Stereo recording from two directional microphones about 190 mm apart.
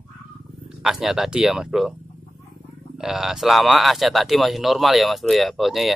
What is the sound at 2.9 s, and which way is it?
Speech, centre (ahead or behind).